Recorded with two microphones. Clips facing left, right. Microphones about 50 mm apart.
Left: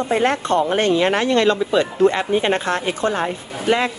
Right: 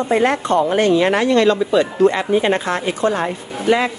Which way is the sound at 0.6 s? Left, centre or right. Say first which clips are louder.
Right 2 dB; left.